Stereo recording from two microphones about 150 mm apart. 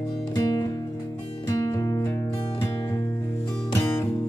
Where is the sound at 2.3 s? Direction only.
35° left (ahead or behind).